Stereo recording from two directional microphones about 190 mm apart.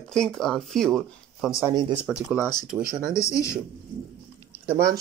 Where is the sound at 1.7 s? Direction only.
20° right (ahead or behind).